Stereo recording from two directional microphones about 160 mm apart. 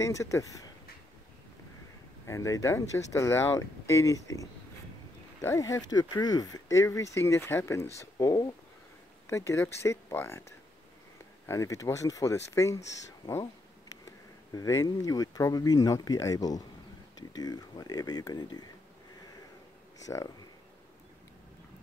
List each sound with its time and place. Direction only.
0.0 s speech: 20° left (ahead or behind)
2.2 s speech: 20° left (ahead or behind)
11.4 s speech: 20° left (ahead or behind)
14.5 s speech: 20° left (ahead or behind)
20.1 s speech: 20° left (ahead or behind)